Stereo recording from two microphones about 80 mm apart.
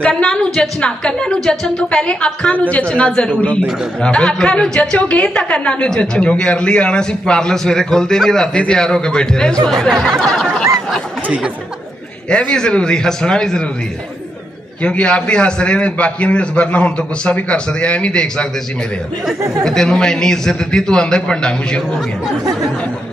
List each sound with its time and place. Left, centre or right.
0.0 s a woman's voice: centre
11.2 s speech: centre
12.3 s a woman's voice: centre
14.8 s a woman's voice: centre
19.6 s a woman's voice: centre